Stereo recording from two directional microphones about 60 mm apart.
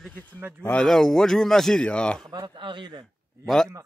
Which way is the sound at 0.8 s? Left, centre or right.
Centre.